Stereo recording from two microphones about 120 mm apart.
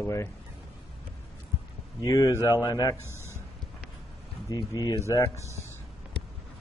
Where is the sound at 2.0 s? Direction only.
30° left (ahead or behind).